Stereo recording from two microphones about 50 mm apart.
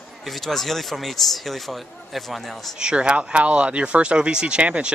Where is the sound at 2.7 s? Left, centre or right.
Centre.